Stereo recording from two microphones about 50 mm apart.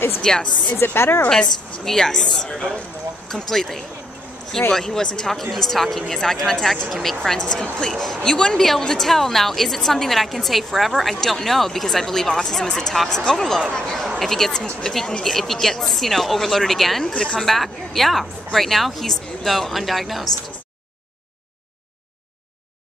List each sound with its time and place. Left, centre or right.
0.2 s speech: centre
0.7 s a woman's voice: left
1.3 s a woman's voice: centre
14.2 s a woman's voice: centre
17.0 s speech: centre
17.4 s a woman's voice: centre